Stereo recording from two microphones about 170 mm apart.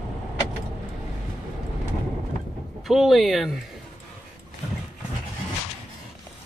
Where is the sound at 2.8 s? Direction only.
Centre (ahead or behind).